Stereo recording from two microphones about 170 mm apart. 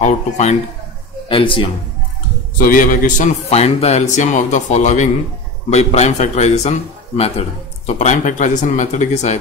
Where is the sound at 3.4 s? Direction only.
40° left (ahead or behind).